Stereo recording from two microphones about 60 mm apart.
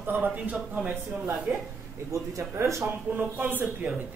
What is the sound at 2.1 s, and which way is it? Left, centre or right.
Speech, right.